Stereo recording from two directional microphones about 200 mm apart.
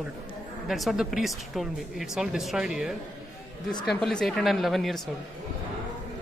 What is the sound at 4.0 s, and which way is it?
Speech, 5° left (ahead or behind).